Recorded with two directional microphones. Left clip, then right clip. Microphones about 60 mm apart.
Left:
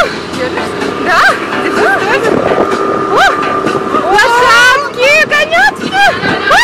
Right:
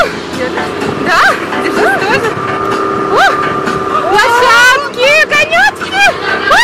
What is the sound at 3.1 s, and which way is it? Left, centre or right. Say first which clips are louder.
Vehicle: even; centre.